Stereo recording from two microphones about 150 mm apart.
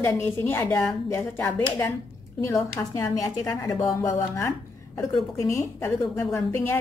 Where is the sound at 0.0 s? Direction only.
15° left (ahead or behind).